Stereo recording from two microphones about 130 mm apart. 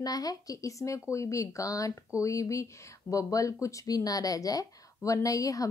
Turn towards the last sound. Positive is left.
turn(degrees=25)  # may be behind; listen again after turning